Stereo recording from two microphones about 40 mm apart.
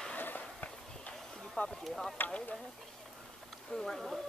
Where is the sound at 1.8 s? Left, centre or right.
Centre.